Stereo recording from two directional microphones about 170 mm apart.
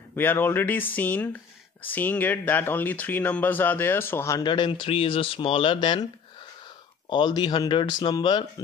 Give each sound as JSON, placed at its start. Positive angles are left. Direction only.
{"t": 0.1, "sound": "speech", "side_deg": 10}
{"t": 7.1, "sound": "speech", "side_deg": 25}